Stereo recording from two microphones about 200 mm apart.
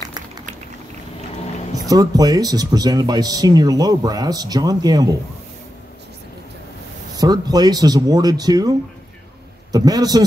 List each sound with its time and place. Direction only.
1.8 s speech: 20° right (ahead or behind)
7.2 s speech: 20° right (ahead or behind)